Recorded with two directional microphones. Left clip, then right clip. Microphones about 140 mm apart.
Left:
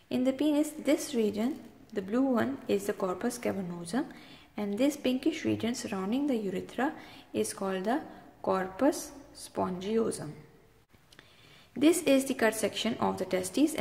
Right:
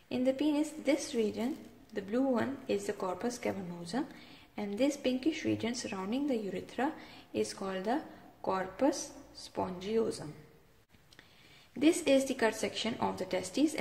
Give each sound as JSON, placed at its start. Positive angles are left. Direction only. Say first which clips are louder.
{"t": 0.1, "sound": "a woman's voice", "louder": "left 2 dB", "side_deg": 20}
{"t": 11.8, "sound": "a woman's voice", "louder": "left 2 dB", "side_deg": 20}